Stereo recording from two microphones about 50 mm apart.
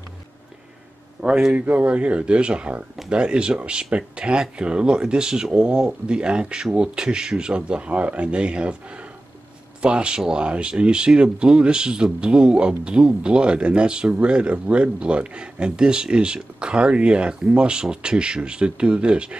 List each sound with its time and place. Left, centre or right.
1.2 s a man's voice: centre
1.5 s speech: right
9.8 s speech: centre